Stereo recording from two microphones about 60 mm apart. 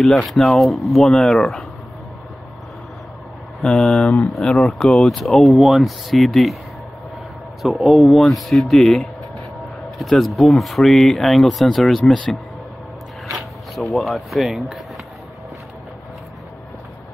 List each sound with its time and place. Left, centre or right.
0.0 s speech: centre
3.6 s speech: centre
7.6 s speech: centre
13.4 s speech: centre